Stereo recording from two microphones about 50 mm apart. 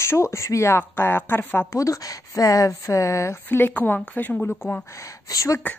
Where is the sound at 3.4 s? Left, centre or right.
Left.